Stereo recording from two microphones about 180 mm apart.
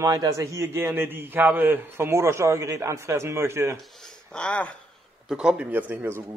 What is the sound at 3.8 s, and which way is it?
Speech, centre (ahead or behind).